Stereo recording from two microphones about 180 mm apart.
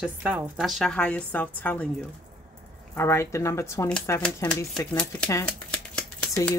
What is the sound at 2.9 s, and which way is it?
Speech, 15° left (ahead or behind).